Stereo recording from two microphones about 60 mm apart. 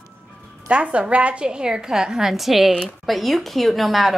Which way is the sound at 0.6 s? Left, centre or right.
Right.